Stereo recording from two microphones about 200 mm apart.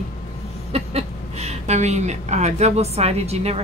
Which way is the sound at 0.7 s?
30° right (ahead or behind).